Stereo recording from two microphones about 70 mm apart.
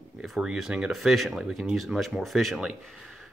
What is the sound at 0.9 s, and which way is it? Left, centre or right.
Speech, centre.